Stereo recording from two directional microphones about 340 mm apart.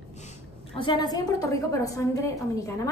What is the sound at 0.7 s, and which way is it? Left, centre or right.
A woman's voice, centre.